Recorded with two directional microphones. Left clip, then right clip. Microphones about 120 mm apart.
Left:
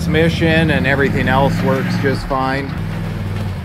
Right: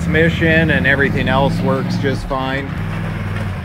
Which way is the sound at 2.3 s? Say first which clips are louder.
Left 3 dB; 30° left (ahead or behind).